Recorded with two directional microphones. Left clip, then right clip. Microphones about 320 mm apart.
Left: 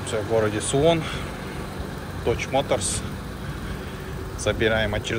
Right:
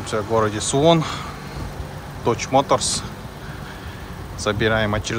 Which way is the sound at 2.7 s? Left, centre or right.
Centre.